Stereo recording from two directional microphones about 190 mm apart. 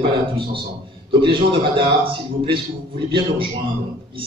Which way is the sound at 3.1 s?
25° right (ahead or behind).